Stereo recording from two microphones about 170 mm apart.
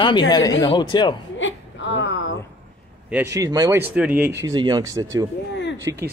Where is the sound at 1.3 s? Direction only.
90° left.